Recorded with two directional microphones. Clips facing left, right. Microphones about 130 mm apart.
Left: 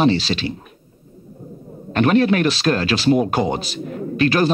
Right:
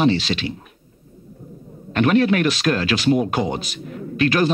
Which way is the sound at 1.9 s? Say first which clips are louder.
Left 1 dB; 35° left (ahead or behind).